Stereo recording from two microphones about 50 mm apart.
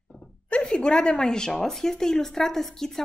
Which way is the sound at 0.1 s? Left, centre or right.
Left.